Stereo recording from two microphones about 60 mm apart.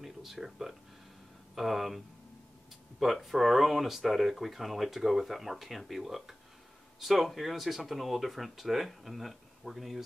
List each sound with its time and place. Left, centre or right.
0.0 s speech: centre
3.0 s speech: centre